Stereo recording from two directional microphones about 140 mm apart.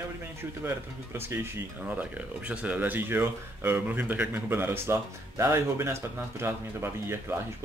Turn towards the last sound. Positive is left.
turn(degrees=-15)  # may be behind; listen again after turning